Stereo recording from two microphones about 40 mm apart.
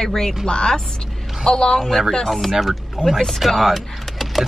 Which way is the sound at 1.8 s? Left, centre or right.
Centre.